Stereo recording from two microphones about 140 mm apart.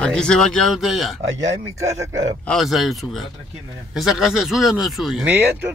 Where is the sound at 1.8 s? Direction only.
25° right (ahead or behind).